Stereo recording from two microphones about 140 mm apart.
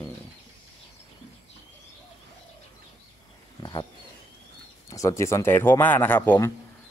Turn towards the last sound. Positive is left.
turn(degrees=15)  # may be behind; listen again after turning